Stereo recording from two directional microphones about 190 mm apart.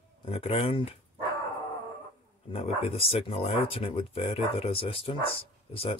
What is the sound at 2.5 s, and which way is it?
Speech, 30° left (ahead or behind).